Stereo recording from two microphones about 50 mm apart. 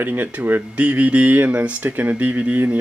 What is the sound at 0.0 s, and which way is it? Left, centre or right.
Speech, right.